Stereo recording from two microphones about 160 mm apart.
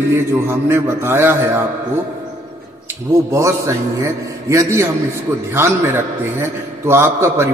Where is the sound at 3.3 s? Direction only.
20° right (ahead or behind).